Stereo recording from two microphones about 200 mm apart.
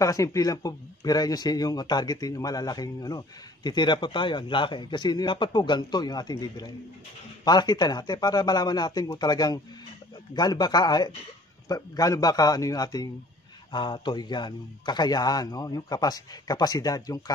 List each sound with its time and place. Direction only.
0.0 s speech: 15° left (ahead or behind)